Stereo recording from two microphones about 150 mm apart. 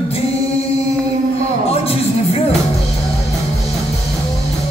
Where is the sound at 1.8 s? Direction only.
40° left (ahead or behind).